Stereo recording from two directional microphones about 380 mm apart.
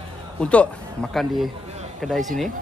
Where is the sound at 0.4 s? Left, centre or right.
Centre.